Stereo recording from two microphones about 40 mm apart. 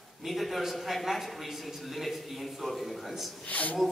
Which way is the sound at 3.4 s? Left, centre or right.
Left.